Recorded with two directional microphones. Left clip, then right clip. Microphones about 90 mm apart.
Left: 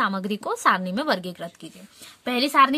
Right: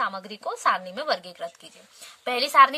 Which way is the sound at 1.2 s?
25° left (ahead or behind).